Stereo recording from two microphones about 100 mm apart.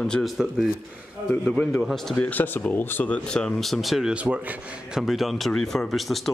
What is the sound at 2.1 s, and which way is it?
Speech, 15° left (ahead or behind).